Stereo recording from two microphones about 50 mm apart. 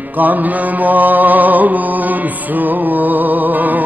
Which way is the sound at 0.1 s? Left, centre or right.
Right.